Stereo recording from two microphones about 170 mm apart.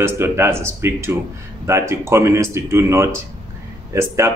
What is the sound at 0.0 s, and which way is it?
Speech, 15° right (ahead or behind).